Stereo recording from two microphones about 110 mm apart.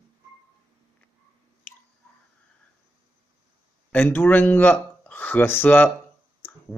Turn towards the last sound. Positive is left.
turn(degrees=15)  # may be behind; listen again after turning